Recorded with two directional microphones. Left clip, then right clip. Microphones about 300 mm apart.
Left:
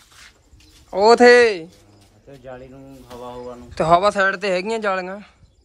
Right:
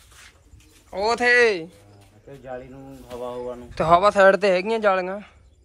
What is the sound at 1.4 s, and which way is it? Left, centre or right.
Speech, centre.